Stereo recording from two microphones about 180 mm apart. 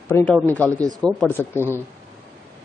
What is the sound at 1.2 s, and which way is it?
Speech, 10° left (ahead or behind).